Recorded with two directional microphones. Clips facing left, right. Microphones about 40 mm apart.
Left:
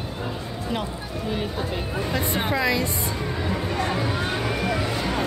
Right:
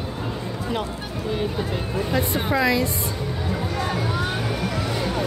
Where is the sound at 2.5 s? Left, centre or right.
Centre.